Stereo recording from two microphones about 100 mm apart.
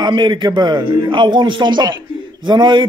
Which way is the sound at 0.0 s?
50° right (ahead or behind).